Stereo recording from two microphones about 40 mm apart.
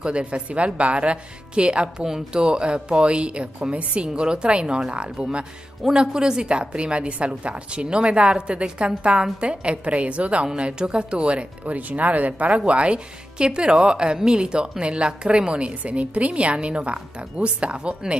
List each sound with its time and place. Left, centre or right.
0.0 s speech: right
10.4 s speech: right
11.7 s speech: right